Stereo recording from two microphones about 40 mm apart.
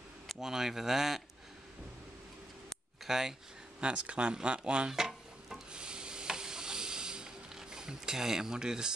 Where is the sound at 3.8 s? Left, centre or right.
Right.